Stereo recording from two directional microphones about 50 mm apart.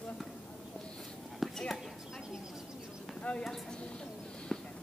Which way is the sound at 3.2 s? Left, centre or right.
Left.